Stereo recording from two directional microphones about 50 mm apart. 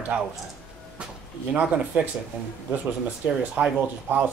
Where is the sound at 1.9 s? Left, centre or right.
Right.